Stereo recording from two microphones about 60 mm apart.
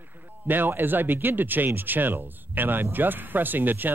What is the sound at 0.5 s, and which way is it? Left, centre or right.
Speech, right.